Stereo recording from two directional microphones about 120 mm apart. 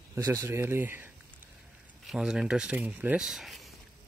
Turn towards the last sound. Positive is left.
turn(degrees=0)  # may be behind; listen again after turning